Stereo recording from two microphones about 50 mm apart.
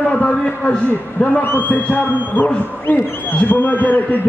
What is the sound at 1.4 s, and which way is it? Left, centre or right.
Speech, left.